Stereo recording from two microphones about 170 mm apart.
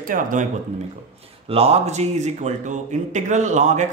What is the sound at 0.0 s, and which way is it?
Speech, 50° right (ahead or behind).